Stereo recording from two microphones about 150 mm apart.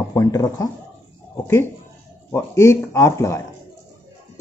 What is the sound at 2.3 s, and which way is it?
Speech, 20° left (ahead or behind).